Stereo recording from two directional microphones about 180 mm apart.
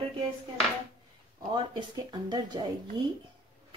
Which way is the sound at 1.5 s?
25° right (ahead or behind).